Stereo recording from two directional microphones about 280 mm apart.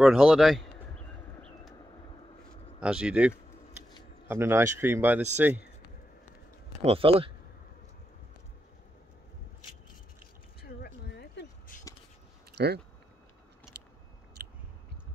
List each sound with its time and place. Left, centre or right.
0.0 s speech: centre
2.8 s speech: centre
6.8 s speech: centre
10.6 s a sound: left
12.5 s speech: right
13.7 s biting: right
14.4 s chewing: right